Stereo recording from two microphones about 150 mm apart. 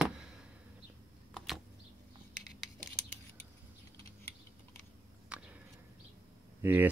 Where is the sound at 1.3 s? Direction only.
Centre (ahead or behind).